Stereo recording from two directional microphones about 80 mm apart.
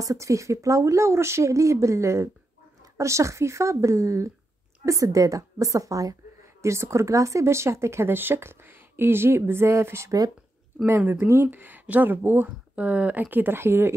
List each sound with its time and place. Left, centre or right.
0.0 s a woman's voice: right
11.4 s speech: right